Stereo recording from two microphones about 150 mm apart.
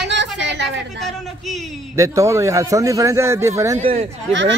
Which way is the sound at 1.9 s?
20° right (ahead or behind).